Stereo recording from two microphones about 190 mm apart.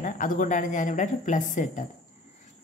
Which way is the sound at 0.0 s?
45° left (ahead or behind).